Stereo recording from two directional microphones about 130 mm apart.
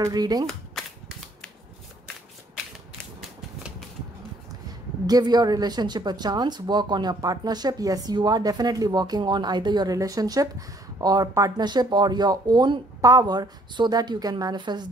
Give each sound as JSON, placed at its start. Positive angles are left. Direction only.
{"t": 0.0, "sound": "speech", "side_deg": -30}
{"t": 5.0, "sound": "a woman's voice", "side_deg": -30}